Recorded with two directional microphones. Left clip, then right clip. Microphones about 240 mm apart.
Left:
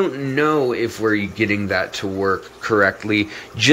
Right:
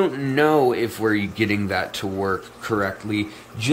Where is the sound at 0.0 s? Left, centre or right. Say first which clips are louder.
Even; centre.